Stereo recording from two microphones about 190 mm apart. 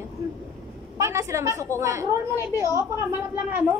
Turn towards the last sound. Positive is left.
turn(degrees=-15)  # may be behind; listen again after turning